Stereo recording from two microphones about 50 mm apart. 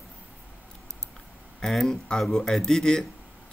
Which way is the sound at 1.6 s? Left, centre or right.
Centre.